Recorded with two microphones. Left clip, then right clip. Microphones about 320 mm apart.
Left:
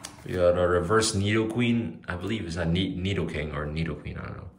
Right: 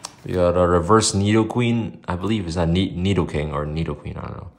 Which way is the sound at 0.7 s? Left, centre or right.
Centre.